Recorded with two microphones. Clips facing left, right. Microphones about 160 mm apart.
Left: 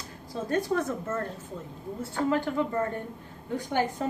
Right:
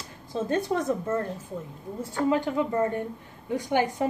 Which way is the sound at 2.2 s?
15° right (ahead or behind).